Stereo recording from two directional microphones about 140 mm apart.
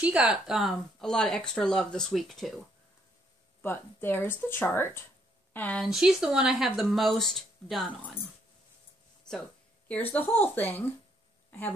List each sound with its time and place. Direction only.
0.0 s speech: 5° right (ahead or behind)
3.6 s a woman's voice: 15° left (ahead or behind)
5.9 s speech: 5° right (ahead or behind)
10.1 s speech: 15° left (ahead or behind)